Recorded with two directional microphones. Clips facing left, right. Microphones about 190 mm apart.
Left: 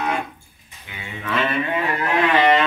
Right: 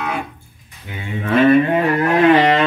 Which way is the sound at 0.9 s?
40° right (ahead or behind).